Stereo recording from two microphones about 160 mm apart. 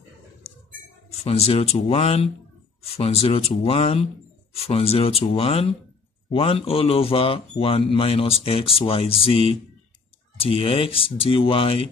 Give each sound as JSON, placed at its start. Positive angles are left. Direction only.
{"t": 1.2, "sound": "a man's voice", "side_deg": 40}